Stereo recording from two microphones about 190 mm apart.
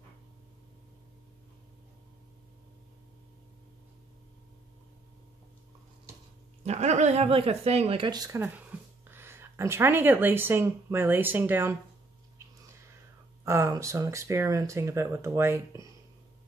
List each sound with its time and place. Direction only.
6.6 s speech: 35° right (ahead or behind); by 11.8 s 10° right (ahead or behind)
13.5 s speech: 15° right (ahead or behind)